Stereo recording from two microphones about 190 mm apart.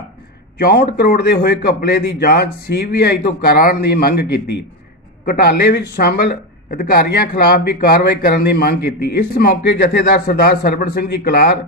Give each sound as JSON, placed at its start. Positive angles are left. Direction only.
{"t": 0.6, "sound": "a man's voice", "side_deg": 50}